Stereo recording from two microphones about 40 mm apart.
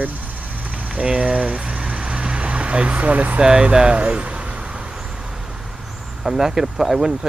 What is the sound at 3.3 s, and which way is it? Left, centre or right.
Speech, right.